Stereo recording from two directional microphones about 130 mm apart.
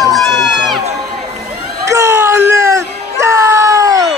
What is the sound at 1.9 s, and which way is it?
Music, 25° right (ahead or behind).